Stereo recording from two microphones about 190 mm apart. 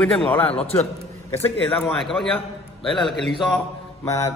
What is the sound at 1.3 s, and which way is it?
A man's voice, 10° left (ahead or behind).